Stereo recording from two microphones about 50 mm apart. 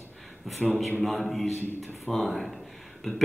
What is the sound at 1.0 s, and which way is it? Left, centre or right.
A man's voice, centre.